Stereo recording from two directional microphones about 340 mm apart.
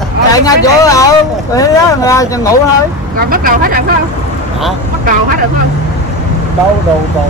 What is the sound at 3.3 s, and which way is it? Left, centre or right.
Speech, right.